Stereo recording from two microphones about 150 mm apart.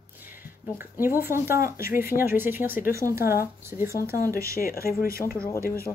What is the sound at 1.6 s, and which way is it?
Speech, 75° left (ahead or behind).